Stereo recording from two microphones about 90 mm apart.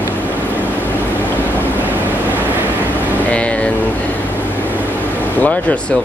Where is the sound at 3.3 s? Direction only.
15° left (ahead or behind).